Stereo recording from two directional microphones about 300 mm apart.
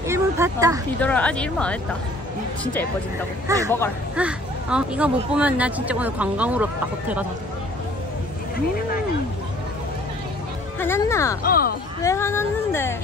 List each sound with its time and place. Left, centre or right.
0.0 s a sound: centre
1.0 s speech: centre
3.4 s speech: centre
10.8 s speech: centre
11.4 s speech: left
12.0 s speech: centre